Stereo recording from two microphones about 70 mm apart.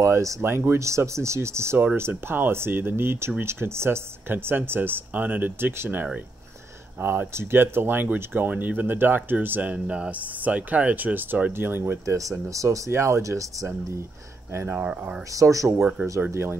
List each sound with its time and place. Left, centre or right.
0.0 s speech: right
0.4 s speech: right
12.2 s speech: right
15.3 s speech: right
15.8 s speech: centre
16.3 s speech: right